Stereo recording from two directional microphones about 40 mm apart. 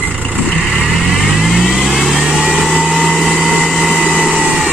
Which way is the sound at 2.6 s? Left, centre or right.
Right.